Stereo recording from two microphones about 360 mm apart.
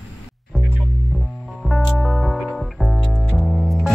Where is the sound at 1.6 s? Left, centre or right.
Centre.